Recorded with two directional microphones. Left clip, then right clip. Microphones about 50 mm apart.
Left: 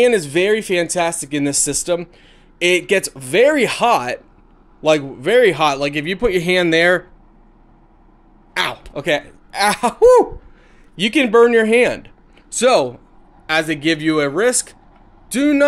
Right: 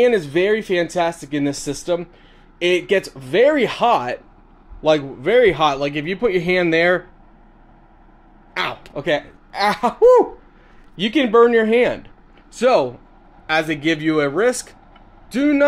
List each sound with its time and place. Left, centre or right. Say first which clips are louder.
0.0 s speech: left 2 dB; left
8.5 s speech: left 3 dB; left